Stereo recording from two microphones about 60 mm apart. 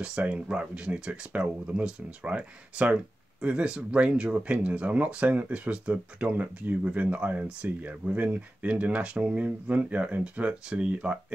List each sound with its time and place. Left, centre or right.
0.0 s speech: right